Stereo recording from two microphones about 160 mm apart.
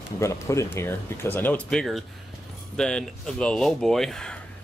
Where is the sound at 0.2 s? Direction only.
20° left (ahead or behind).